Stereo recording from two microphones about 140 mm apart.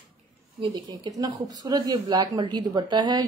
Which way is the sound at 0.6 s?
30° right (ahead or behind).